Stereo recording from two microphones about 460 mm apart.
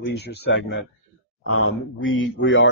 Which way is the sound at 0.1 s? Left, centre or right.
Left.